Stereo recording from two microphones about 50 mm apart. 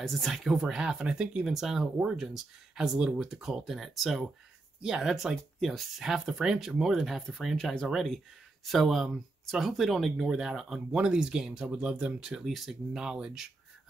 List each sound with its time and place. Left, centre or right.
0.0 s speech: centre
0.6 s speech: centre
7.5 s speech: centre
11.0 s speech: right
12.4 s speech: centre
13.0 s speech: centre